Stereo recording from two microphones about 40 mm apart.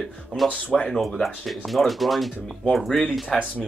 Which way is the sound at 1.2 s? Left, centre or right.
Centre.